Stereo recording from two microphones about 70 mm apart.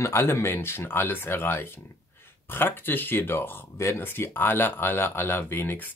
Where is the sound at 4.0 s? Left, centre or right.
Left.